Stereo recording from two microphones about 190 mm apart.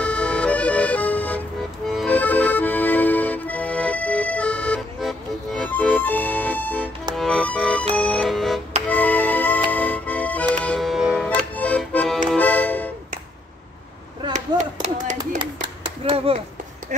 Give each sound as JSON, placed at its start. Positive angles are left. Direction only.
{"t": 0.0, "sound": "music", "side_deg": 5}
{"t": 1.9, "sound": "accordion", "side_deg": 5}
{"t": 7.2, "sound": "music", "side_deg": 0}
{"t": 11.2, "sound": "accordion", "side_deg": 10}
{"t": 12.3, "sound": "music", "side_deg": 10}
{"t": 14.3, "sound": "a sound", "side_deg": -40}
{"t": 15.1, "sound": "clapping", "side_deg": -25}